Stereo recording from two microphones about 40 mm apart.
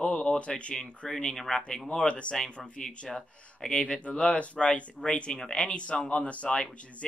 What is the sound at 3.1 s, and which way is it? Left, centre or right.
Speech, centre.